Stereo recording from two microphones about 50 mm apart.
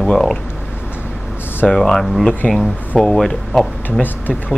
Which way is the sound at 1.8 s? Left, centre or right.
Centre.